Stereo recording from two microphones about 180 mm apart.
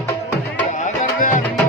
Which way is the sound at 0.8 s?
45° left (ahead or behind).